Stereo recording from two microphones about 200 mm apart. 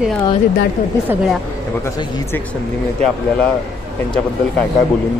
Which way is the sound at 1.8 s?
15° left (ahead or behind).